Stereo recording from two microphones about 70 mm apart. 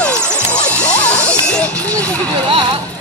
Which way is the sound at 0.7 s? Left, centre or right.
Centre.